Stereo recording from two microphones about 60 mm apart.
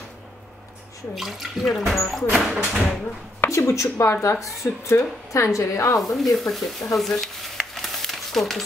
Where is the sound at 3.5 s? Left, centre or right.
Left.